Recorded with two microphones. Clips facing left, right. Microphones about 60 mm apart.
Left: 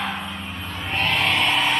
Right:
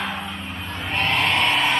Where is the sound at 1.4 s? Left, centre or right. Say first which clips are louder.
Right 1 dB; centre.